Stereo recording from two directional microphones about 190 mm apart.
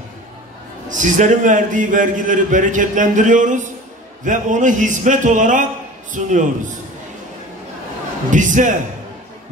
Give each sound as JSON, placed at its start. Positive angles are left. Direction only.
{"t": 0.8, "sound": "a man's voice", "side_deg": -40}
{"t": 8.3, "sound": "a man's voice", "side_deg": -40}